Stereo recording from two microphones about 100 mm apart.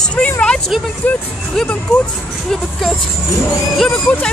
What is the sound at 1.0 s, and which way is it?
Speech, 15° left (ahead or behind).